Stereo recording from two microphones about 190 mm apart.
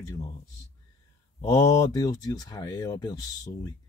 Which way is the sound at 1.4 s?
20° left (ahead or behind).